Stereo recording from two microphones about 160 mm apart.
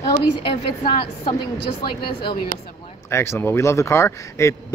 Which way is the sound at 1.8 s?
30° left (ahead or behind).